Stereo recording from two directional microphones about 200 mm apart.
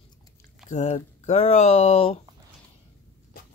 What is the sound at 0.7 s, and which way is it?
Speech, 35° left (ahead or behind).